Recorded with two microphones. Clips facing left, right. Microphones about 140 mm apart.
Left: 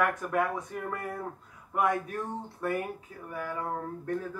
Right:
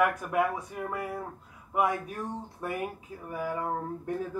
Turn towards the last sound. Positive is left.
turn(degrees=-15)  # may be behind; listen again after turning